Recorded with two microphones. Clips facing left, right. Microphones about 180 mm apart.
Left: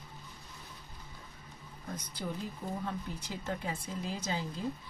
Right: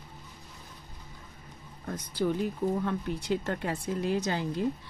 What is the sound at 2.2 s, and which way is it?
Speech, 70° right (ahead or behind).